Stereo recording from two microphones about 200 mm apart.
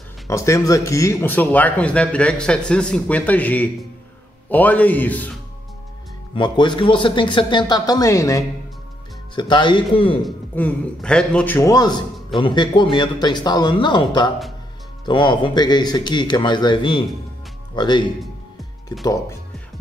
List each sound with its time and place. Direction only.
0.3 s speech: 15° left (ahead or behind)
6.3 s speech: 25° left (ahead or behind)
10.2 s speech: 5° left (ahead or behind); by 18.0 s 20° left (ahead or behind)
19.0 s speech: 15° left (ahead or behind)